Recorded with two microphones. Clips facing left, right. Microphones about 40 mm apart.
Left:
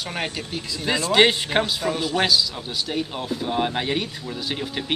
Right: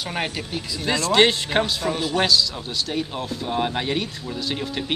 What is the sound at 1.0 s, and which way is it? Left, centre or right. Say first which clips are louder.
Speech: even; centre.